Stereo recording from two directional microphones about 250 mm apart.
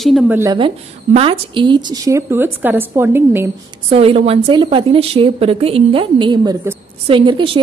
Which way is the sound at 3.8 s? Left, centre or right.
Right.